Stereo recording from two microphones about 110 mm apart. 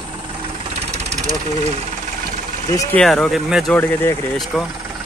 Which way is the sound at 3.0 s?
5° left (ahead or behind).